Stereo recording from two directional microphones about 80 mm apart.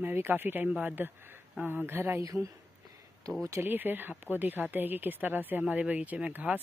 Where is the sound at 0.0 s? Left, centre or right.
Right.